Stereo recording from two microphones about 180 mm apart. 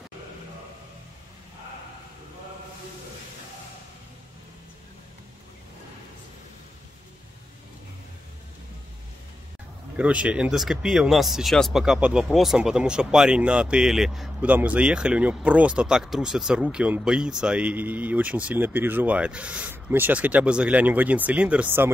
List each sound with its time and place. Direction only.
9.9 s speech: 5° right (ahead or behind)